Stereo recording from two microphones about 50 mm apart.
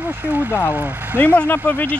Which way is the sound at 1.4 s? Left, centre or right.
Left.